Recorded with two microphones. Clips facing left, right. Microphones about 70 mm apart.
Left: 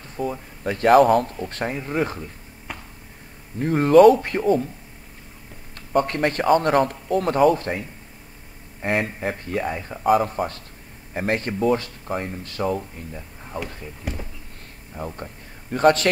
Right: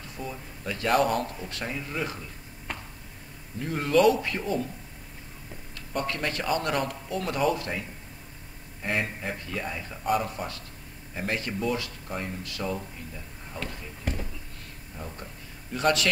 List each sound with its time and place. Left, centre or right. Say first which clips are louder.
0.3 s speech: left 8 dB; left
2.7 s a sound: left 1 dB; centre
3.5 s speech: left 10 dB; left
5.8 s speech: left 10 dB; left
8.8 s speech: left 6 dB; left
14.1 s speech: left 1 dB; centre
15.0 s speech: left 8 dB; left